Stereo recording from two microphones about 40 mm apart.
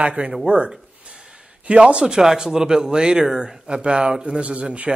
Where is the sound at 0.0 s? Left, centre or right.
Right.